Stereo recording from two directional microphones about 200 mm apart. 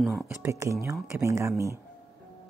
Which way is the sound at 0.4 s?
15° right (ahead or behind).